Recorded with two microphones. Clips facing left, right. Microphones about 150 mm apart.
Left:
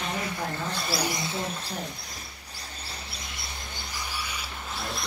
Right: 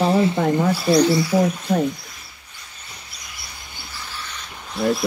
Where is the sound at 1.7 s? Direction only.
65° right (ahead or behind).